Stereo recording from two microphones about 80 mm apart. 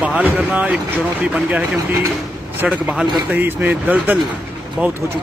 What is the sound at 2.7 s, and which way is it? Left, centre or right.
Speech, centre.